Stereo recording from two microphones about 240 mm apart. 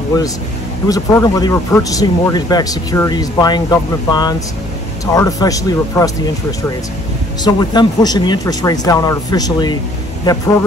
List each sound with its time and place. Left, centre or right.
0.8 s speech: centre
7.4 s speech: centre